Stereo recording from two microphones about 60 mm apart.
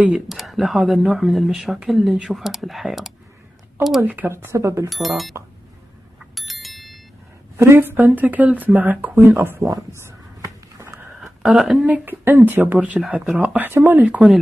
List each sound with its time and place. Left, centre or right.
0.3 s a sound: centre
0.7 s speech: centre
1.1 s speech: centre
4.0 s speech: right
4.3 s speech: right
4.8 s speech: centre
6.1 s bicycle bell: centre
7.5 s speech: right
9.6 s a sound: right
11.5 s speech: centre
11.8 s speech: right